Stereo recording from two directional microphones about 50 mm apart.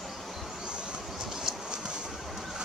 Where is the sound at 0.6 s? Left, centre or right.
Centre.